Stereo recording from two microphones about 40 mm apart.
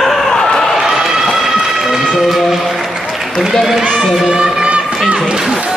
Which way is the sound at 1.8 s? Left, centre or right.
Centre.